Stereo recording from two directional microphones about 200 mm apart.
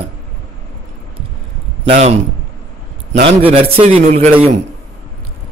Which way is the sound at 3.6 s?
30° right (ahead or behind).